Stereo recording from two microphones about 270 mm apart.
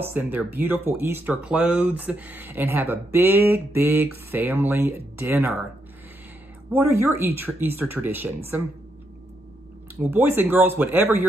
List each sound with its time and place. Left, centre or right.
0.0 s speech: centre
6.7 s speech: centre
9.9 s speech: centre